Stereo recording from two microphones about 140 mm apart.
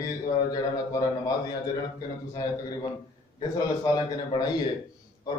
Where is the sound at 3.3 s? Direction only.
25° left (ahead or behind).